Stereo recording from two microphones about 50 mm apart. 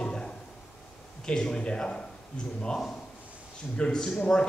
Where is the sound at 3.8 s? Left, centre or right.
Centre.